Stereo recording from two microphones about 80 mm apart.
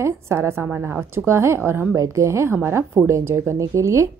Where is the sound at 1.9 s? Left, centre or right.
Right.